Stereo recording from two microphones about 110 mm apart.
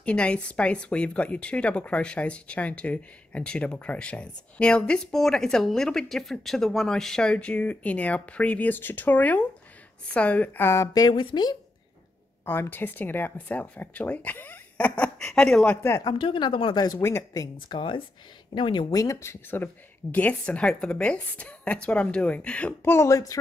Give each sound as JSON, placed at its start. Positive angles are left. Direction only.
{"t": 0.0, "sound": "a woman's voice", "side_deg": 10}
{"t": 12.4, "sound": "speech", "side_deg": 20}
{"t": 16.0, "sound": "speech", "side_deg": 40}
{"t": 16.8, "sound": "speech", "side_deg": 30}
{"t": 18.9, "sound": "speech", "side_deg": 30}
{"t": 22.9, "sound": "a woman's voice", "side_deg": 30}